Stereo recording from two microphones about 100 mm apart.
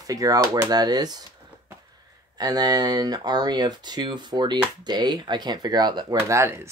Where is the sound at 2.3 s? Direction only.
40° right (ahead or behind).